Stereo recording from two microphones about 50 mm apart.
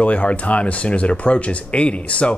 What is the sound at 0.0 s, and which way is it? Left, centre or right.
Speech, left.